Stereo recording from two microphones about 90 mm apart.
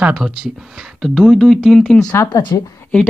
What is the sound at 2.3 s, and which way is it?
Speech, 60° left (ahead or behind).